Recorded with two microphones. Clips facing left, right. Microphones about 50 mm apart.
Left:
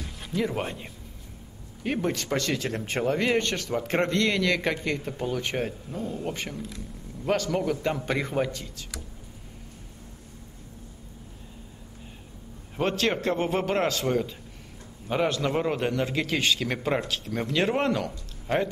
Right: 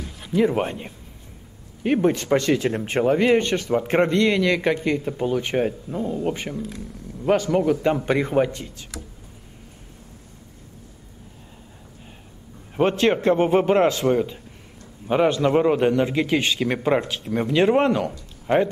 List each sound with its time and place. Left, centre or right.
0.0 s music: centre
0.4 s a man's voice: centre
5.9 s speech: right
7.2 s a man's voice: centre
12.7 s a man's voice: right